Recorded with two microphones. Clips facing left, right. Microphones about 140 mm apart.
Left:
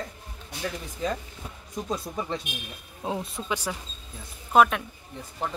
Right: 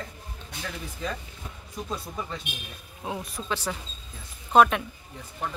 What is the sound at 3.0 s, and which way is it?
Speech, 25° left (ahead or behind).